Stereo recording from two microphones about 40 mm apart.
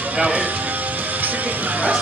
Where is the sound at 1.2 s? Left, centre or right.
Right.